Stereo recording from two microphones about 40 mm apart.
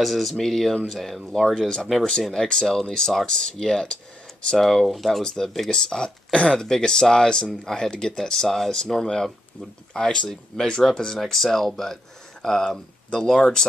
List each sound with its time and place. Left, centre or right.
0.0 s speech: centre
4.6 s speech: centre
5.2 s speech: centre
10.8 s speech: centre